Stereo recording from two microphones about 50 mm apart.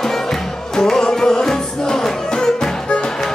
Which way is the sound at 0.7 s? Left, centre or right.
Centre.